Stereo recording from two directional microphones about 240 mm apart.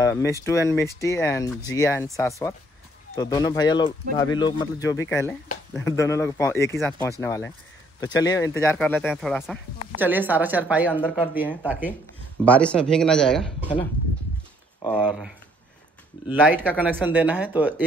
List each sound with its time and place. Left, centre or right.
0.0 s speech: centre
10.9 s speech: centre
12.4 s speech: centre
14.8 s speech: centre